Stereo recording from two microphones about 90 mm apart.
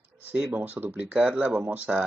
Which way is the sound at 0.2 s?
20° right (ahead or behind).